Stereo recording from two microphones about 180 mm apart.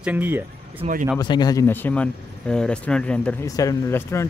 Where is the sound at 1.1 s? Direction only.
25° left (ahead or behind); by 3.4 s 5° left (ahead or behind).